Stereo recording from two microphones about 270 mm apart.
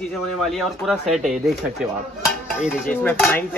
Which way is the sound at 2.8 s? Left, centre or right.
Centre.